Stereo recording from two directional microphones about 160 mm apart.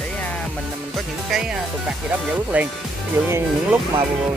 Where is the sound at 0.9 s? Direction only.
5° right (ahead or behind).